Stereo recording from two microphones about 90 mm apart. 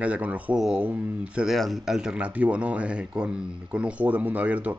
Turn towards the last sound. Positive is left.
turn(degrees=-15)  # may be behind; listen again after turning